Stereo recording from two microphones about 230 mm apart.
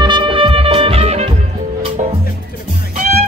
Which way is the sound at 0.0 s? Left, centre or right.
Right.